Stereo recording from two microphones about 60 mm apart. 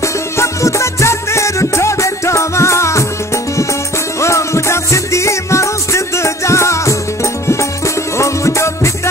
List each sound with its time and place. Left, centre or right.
0.0 s music: left
4.2 s music: left